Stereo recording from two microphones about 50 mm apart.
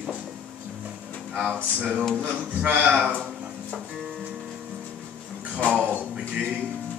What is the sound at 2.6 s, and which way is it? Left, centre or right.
Speech, right.